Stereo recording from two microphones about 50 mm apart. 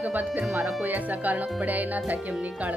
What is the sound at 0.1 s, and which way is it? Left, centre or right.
A woman's voice, right.